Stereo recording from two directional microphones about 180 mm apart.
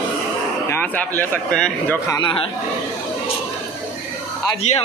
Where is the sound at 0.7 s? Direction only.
10° left (ahead or behind).